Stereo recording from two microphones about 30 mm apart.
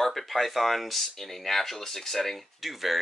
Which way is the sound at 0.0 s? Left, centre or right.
Centre.